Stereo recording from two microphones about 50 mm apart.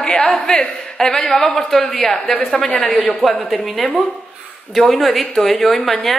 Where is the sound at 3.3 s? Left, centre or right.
Centre.